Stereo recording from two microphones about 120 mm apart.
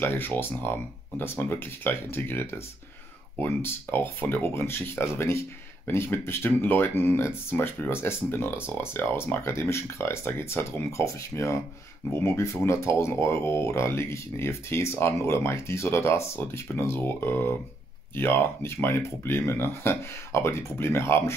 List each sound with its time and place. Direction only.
0.0 s speech: 15° left (ahead or behind)